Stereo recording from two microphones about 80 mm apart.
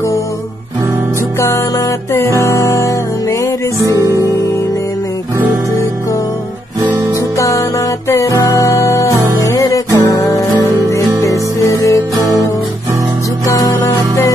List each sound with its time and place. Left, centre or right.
2.1 s music: left
3.9 s music: right
7.3 s music: left
13.5 s music: left